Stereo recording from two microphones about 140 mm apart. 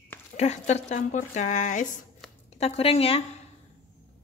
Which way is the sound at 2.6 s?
45° left (ahead or behind).